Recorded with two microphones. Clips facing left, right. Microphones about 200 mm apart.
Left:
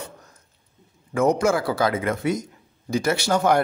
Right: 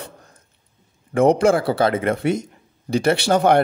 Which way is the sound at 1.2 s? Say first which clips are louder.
Right 4 dB; 30° right (ahead or behind).